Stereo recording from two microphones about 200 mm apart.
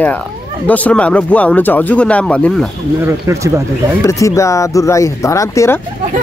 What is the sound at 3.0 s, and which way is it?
Speech, 15° right (ahead or behind).